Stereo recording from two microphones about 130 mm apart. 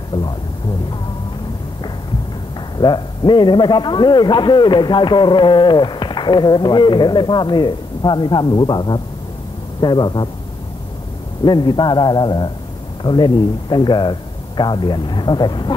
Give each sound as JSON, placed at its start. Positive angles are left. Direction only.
{"t": 2.8, "sound": "a man's voice", "side_deg": 35}
{"t": 11.4, "sound": "a man's voice", "side_deg": 35}